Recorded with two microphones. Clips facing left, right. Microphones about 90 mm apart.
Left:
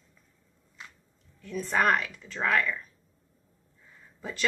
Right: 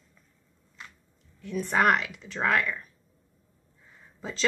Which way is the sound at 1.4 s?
15° right (ahead or behind).